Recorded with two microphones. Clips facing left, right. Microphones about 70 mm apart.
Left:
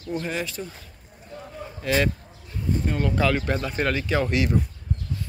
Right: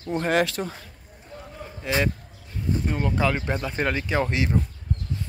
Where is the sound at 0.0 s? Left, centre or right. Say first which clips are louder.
Right 2 dB; right.